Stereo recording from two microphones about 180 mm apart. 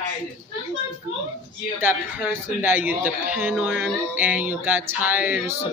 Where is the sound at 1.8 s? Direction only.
10° right (ahead or behind).